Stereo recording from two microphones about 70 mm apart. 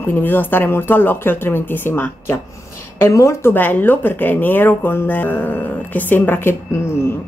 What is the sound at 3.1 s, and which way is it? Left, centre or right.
Speech, left.